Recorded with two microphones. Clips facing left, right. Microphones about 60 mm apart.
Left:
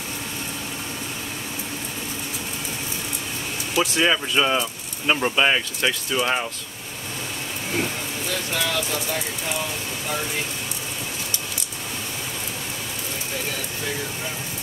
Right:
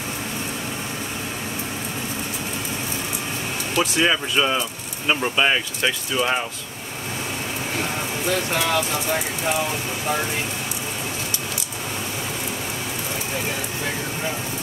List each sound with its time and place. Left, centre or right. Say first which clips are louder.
3.7 s speech: even; centre
8.5 s speech: right 3 dB; right